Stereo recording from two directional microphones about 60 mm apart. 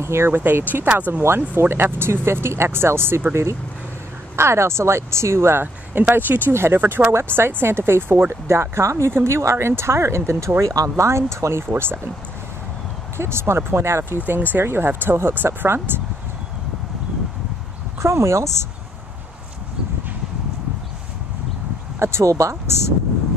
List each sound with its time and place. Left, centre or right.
0.0 s speech: right
0.4 s speech: right
1.2 s speech: right
4.4 s speech: right
6.8 s speech: right
7.1 s speech: right
10.6 s speech: right
11.1 s speech: right
11.6 s speech: right
13.2 s speech: right
14.1 s speech: right
18.0 s speech: right
21.9 s speech: right